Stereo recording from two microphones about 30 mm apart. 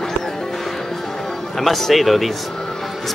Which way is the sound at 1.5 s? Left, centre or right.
Centre.